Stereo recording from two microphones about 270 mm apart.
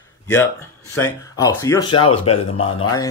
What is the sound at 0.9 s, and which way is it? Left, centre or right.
Speech, centre.